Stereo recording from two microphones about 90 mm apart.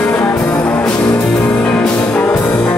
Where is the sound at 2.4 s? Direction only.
25° left (ahead or behind).